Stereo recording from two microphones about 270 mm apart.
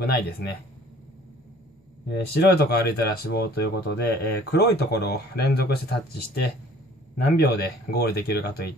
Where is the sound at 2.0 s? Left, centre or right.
Left.